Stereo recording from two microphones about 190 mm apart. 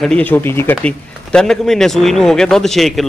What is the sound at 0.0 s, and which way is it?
A man's voice, 5° left (ahead or behind).